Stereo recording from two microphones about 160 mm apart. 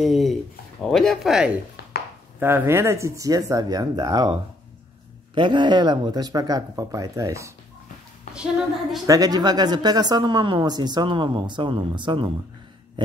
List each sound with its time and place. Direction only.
0.0 s speech: centre (ahead or behind)
2.4 s speech: 15° right (ahead or behind)
8.4 s speech: centre (ahead or behind)
9.0 s speech: 25° right (ahead or behind)